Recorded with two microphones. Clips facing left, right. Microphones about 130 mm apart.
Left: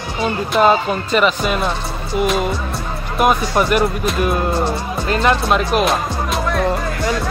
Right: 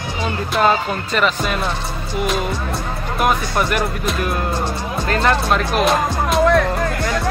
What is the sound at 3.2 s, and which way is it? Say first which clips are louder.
Speech: left 3 dB; 15° left (ahead or behind).